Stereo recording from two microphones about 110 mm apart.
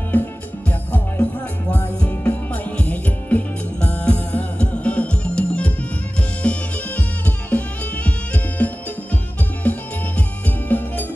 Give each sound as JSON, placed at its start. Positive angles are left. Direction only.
{"t": 0.1, "sound": "music", "side_deg": 15}